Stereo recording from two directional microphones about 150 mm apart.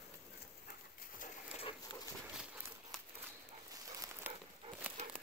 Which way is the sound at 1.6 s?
35° left (ahead or behind).